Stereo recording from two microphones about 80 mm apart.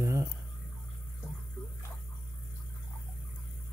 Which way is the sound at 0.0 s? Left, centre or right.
Right.